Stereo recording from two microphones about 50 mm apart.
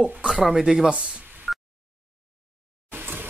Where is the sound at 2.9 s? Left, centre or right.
Right.